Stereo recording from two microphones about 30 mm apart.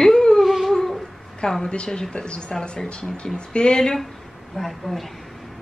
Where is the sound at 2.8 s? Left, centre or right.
Left.